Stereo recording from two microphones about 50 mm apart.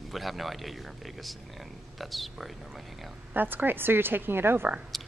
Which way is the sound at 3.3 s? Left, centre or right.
Right.